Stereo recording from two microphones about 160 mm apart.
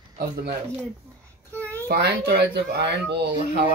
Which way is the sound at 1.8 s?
90° right.